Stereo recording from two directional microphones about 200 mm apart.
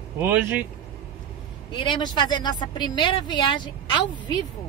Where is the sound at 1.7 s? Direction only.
25° left (ahead or behind).